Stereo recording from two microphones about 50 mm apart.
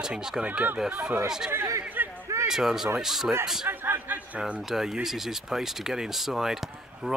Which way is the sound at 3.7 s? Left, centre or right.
Right.